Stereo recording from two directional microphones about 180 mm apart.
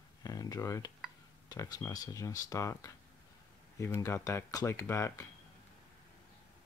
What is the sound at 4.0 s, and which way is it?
Speech, 20° left (ahead or behind).